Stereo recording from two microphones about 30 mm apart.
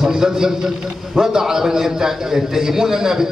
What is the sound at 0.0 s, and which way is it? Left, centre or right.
A man's voice, centre.